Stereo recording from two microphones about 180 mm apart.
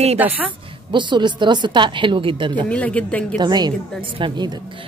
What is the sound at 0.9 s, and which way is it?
A woman's voice, 25° right (ahead or behind).